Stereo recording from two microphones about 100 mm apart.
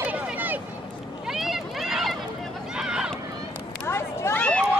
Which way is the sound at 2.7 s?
5° right (ahead or behind).